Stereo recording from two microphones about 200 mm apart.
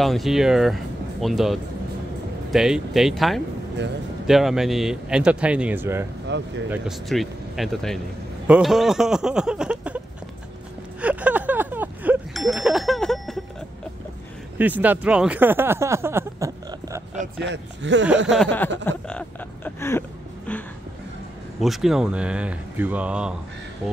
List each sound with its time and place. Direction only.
0.0 s speech: centre (ahead or behind)
6.2 s speech: 65° right (ahead or behind)
6.7 s speech: centre (ahead or behind)
11.0 s a sound: 5° right (ahead or behind)
14.6 s speech: 10° right (ahead or behind)
17.4 s speech: 60° right (ahead or behind)
18.3 s speech: 5° left (ahead or behind)
18.9 s a sound: 5° left (ahead or behind)
21.5 s speech: centre (ahead or behind)